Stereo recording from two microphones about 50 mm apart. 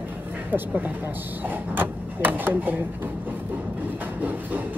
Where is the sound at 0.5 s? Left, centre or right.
Right.